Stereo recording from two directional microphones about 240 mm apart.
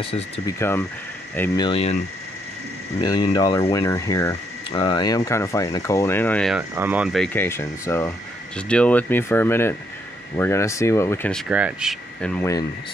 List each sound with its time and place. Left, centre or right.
0.6 s speech: centre
1.6 s speech: left
3.0 s speech: centre
6.7 s speech: centre